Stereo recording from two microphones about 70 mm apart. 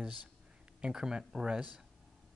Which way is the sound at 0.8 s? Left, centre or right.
Centre.